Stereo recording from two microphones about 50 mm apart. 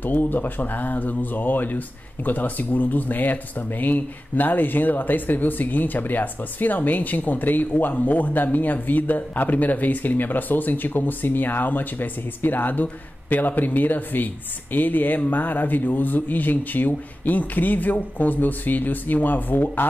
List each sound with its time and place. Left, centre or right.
0.0 s speech: left